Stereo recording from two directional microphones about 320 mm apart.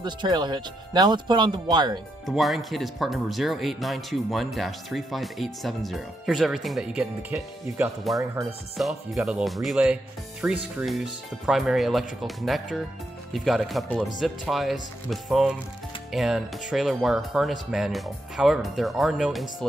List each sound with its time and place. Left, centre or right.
0.0 s speech: centre
2.2 s speech: centre